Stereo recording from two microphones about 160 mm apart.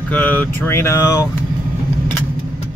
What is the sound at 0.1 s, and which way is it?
Speech, 10° left (ahead or behind).